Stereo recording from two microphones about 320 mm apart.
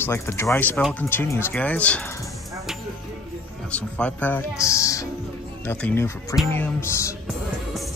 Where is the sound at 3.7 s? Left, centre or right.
Centre.